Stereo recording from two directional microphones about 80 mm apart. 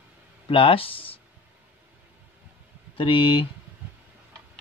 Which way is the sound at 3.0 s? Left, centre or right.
Left.